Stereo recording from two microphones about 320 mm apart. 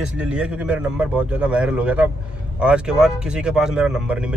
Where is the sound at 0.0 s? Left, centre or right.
Centre.